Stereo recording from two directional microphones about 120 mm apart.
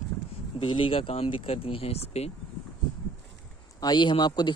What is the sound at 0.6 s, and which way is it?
Speech, 45° left (ahead or behind).